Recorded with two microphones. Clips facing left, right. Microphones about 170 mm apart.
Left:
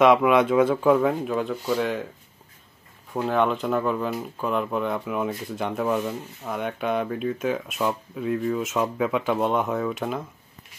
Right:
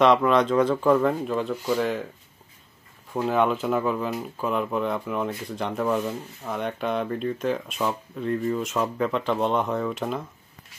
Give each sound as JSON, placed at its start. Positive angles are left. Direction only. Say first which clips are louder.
{"t": 0.0, "sound": "speech", "louder": "left 1 dB", "side_deg": 5}
{"t": 3.1, "sound": "speech", "louder": "even", "side_deg": -5}